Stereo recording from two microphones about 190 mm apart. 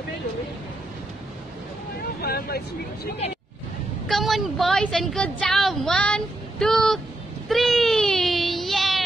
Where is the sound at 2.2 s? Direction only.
55° left (ahead or behind).